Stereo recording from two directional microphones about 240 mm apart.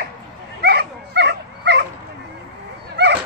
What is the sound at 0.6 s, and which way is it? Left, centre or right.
Dog, right.